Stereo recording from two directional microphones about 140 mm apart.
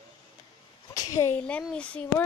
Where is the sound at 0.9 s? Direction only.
25° left (ahead or behind).